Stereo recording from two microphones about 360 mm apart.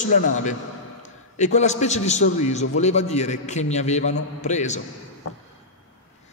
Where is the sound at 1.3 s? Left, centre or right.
Centre.